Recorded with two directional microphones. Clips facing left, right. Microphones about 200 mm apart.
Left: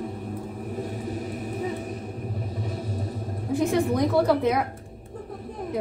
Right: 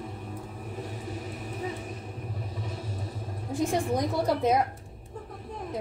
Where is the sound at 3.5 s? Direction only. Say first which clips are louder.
Left 4 dB; 65° left (ahead or behind).